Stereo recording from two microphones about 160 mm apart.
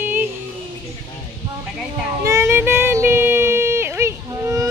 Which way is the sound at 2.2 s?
15° right (ahead or behind).